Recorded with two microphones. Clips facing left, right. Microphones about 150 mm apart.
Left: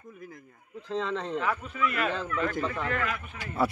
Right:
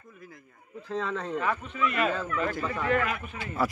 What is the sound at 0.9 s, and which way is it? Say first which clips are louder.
Speech: left 1 dB; 10° right (ahead or behind).